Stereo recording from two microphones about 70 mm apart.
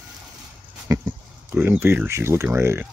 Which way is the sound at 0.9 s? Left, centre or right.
Right.